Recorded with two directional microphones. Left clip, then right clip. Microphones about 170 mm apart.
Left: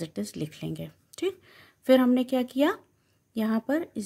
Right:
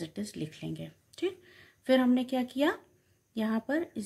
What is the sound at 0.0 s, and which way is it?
Speech, 45° left (ahead or behind).